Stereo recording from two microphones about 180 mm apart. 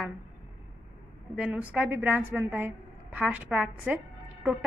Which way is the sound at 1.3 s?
5° right (ahead or behind).